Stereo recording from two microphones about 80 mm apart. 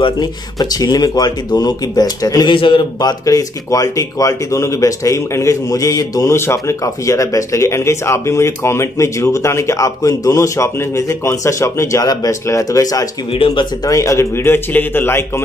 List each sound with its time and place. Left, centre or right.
0.0 s speech: left
2.5 s a man's voice: left
3.0 s speech: left
6.3 s speech: left
12.1 s speech: left
12.4 s speech: left